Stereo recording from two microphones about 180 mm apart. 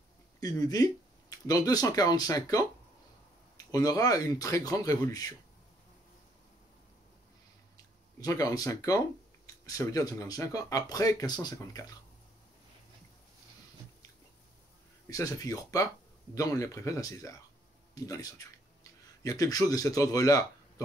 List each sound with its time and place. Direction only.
0.4 s speech: 20° left (ahead or behind)
7.7 s speech: 20° left (ahead or behind)
15.0 s speech: 20° left (ahead or behind)